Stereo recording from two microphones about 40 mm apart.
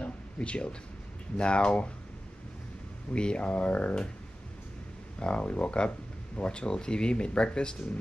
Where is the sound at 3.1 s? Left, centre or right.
Left.